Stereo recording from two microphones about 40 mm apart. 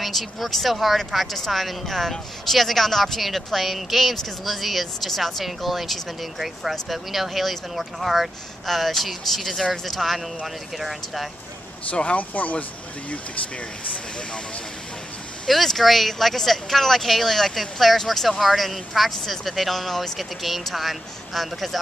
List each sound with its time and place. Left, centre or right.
0.0 s speech: centre
11.9 s speech: left
12.2 s speech: left
15.4 s speech: centre